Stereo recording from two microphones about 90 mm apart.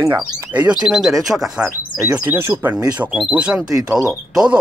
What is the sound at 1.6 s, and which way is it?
Speech, 15° right (ahead or behind).